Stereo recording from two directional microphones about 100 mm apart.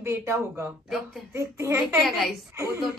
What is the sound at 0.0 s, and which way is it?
A woman's voice, 25° right (ahead or behind).